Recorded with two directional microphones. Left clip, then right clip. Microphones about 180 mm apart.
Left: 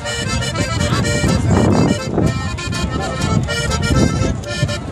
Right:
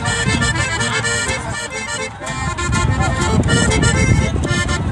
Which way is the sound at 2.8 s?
35° left (ahead or behind).